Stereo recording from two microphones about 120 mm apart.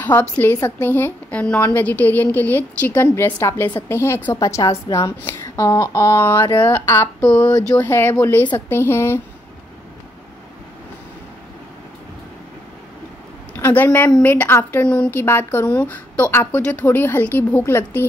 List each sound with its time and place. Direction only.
0.0 s a woman's voice: 15° left (ahead or behind)
13.6 s a sound: 15° left (ahead or behind)
14.2 s a woman's voice: 15° left (ahead or behind)